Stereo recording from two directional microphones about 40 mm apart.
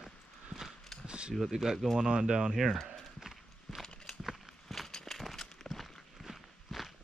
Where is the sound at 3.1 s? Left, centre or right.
Centre.